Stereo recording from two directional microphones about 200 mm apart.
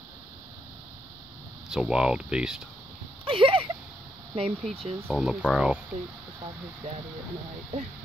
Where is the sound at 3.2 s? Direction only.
25° right (ahead or behind).